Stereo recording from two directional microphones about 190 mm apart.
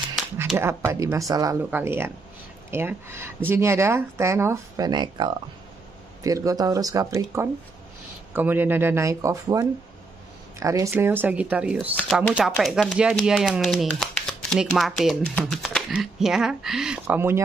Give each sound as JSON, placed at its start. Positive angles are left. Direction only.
{"t": 0.6, "sound": "speech", "side_deg": -15}